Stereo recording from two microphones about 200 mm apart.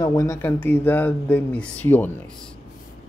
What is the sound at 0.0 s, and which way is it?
Speech, 15° left (ahead or behind).